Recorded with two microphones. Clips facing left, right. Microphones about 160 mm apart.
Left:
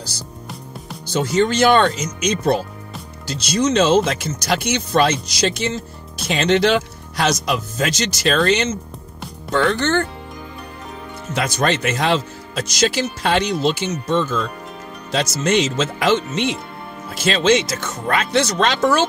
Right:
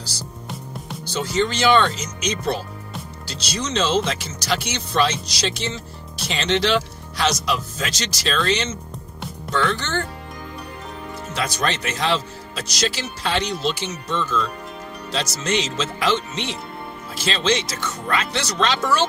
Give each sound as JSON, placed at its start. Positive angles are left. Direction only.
{"t": 1.0, "sound": "speech", "side_deg": 50}
{"t": 11.3, "sound": "speech", "side_deg": 50}